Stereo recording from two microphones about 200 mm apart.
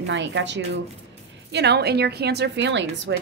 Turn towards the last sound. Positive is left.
turn(degrees=-65)  # may be behind; listen again after turning